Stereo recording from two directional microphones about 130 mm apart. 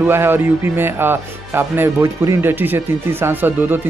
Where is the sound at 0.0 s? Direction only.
15° right (ahead or behind).